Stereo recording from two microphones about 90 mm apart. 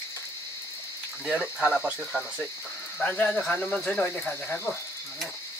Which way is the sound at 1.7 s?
5° left (ahead or behind).